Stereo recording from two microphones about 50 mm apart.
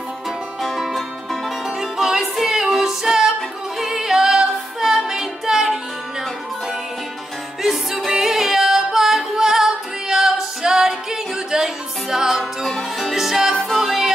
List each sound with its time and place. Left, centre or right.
0.6 s music: centre
7.6 s music: centre
12.6 s music: centre
13.1 s music: centre